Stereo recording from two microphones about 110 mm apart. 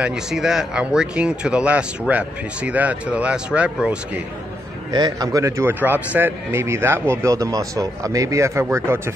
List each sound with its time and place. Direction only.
0.0 s speech: 5° right (ahead or behind)
4.9 s speech: 35° right (ahead or behind)